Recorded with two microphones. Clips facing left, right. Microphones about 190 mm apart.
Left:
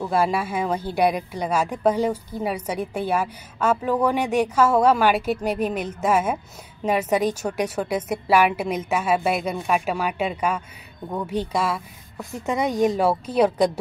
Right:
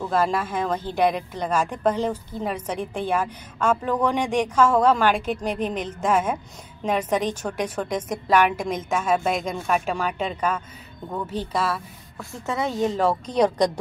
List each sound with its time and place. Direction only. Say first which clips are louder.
0.0 s speech: left 1 dB; 10° left (ahead or behind)